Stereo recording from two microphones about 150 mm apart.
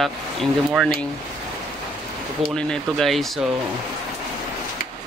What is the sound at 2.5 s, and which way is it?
Speech, 5° left (ahead or behind).